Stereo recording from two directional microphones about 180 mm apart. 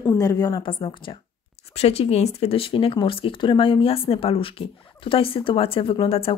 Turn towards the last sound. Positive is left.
turn(degrees=30)  # may be behind; listen again after turning